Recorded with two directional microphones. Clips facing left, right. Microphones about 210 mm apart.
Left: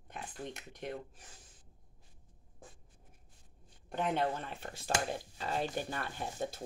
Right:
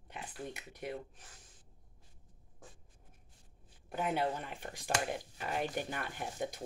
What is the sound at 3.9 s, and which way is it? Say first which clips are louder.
Speech: left 1 dB; 5° right (ahead or behind).